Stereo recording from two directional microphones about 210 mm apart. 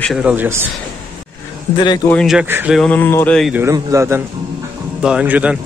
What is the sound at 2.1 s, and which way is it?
Speech, centre (ahead or behind).